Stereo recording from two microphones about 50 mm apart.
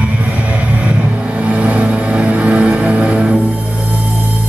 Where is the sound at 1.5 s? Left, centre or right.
Right.